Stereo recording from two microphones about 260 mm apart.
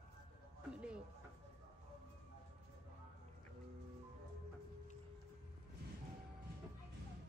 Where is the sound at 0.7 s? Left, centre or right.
Centre.